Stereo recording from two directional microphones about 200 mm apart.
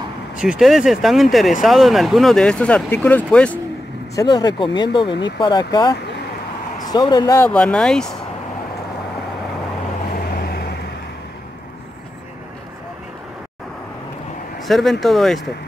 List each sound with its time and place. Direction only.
0.4 s speech: 5° right (ahead or behind)
4.1 s speech: 20° left (ahead or behind); by 8.2 s 5° left (ahead or behind)
10.3 s vehicle: 50° left (ahead or behind)
14.6 s speech: centre (ahead or behind)